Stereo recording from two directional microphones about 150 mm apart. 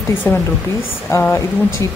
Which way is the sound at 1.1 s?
15° left (ahead or behind).